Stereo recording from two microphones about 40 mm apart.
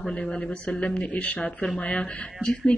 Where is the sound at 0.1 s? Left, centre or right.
Left.